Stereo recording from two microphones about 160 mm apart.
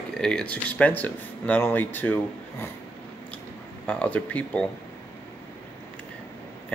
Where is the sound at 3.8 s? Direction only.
10° left (ahead or behind).